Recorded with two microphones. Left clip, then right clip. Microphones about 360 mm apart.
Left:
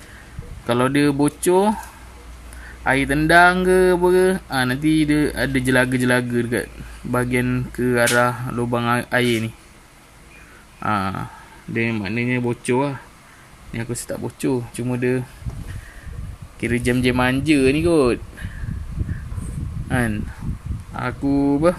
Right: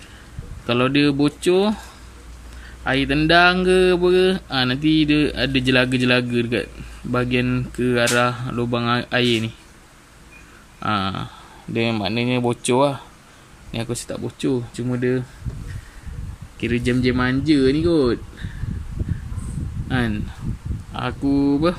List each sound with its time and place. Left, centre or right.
0.7 s speech: centre
2.8 s speech: centre
10.8 s speech: centre
12.0 s speech: right
12.3 s speech: centre
16.6 s speech: centre
19.9 s speech: centre